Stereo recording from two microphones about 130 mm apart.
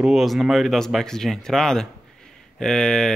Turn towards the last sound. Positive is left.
turn(degrees=5)  # may be behind; listen again after turning